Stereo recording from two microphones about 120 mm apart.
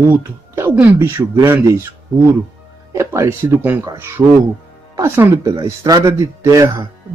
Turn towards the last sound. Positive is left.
turn(degrees=-30)  # may be behind; listen again after turning